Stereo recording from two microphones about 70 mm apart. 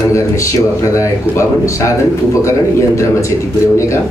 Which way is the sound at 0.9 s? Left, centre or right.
Left.